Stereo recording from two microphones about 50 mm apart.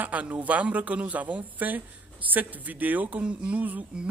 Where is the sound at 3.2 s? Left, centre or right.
Right.